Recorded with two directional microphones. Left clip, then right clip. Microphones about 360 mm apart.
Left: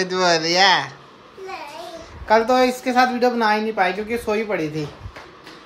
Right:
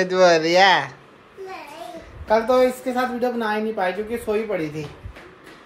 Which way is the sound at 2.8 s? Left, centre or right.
Left.